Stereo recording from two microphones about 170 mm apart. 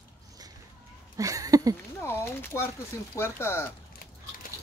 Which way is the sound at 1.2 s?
20° right (ahead or behind).